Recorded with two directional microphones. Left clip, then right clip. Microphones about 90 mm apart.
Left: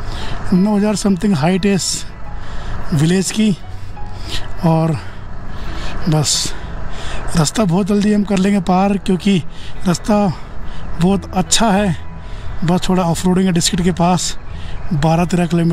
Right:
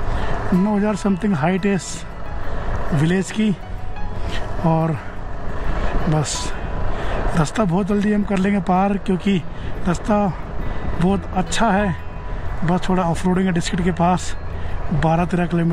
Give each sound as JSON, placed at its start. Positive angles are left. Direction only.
{"t": 0.7, "sound": "speech", "side_deg": 35}
{"t": 3.0, "sound": "speech", "side_deg": 35}
{"t": 4.3, "sound": "music", "side_deg": 35}
{"t": 6.0, "sound": "speech", "side_deg": 35}